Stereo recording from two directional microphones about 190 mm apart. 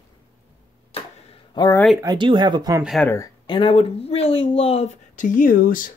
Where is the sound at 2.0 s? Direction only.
25° right (ahead or behind).